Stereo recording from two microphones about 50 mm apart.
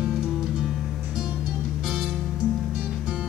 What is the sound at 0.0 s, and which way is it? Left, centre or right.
Music, centre.